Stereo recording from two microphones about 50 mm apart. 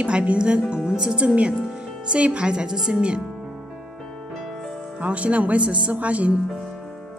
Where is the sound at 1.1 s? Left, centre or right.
Right.